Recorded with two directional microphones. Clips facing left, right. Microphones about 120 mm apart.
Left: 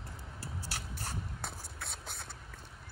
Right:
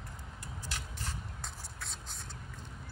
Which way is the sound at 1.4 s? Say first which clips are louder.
Left 2 dB; 60° left (ahead or behind).